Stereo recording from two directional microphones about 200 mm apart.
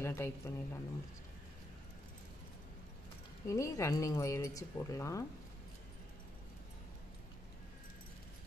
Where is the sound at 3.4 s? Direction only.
15° left (ahead or behind).